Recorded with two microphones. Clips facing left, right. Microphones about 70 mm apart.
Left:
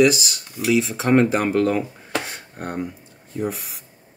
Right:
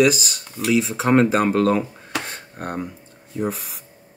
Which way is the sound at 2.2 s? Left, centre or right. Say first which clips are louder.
Right 1 dB; centre.